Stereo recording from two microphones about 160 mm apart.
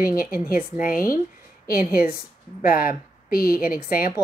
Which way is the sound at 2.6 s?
65° left (ahead or behind).